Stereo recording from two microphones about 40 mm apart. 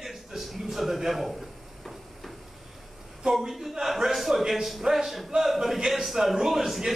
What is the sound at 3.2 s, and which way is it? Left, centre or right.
A man's voice, centre.